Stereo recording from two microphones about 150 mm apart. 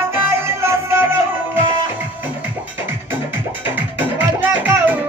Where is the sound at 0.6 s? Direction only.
15° right (ahead or behind).